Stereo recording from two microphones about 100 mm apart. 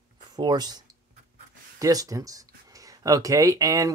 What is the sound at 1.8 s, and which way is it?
Speech, 35° right (ahead or behind).